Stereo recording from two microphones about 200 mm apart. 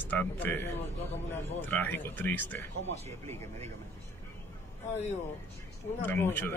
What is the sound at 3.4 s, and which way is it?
Speech, 30° right (ahead or behind).